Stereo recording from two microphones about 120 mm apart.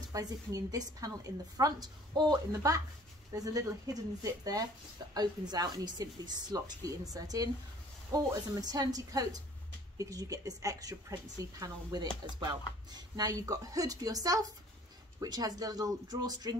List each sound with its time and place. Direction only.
0.1 s a woman's voice: 30° right (ahead or behind)